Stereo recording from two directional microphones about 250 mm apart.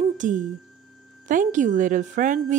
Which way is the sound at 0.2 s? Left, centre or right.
Right.